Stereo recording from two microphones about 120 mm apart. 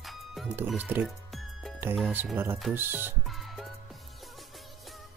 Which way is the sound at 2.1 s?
20° right (ahead or behind).